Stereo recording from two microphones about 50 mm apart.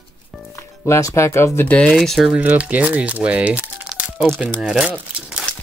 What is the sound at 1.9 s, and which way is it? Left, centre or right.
Speech, centre.